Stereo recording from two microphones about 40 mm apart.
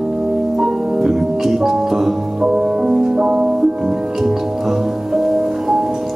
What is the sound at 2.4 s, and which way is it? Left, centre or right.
Music, right.